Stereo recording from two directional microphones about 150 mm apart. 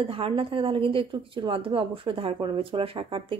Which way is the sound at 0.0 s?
35° right (ahead or behind).